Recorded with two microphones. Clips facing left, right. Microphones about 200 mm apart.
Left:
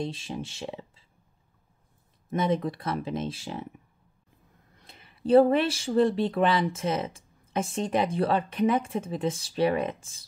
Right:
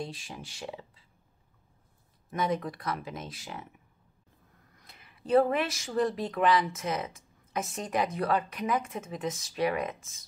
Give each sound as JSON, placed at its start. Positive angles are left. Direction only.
{"t": 0.0, "sound": "speech", "side_deg": 25}
{"t": 2.3, "sound": "speech", "side_deg": 25}
{"t": 4.7, "sound": "speech", "side_deg": 25}